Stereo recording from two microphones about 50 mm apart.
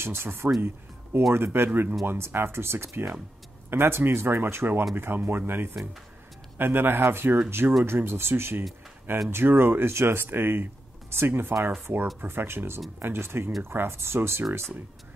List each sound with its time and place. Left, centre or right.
0.0 s speech: right
3.7 s speech: right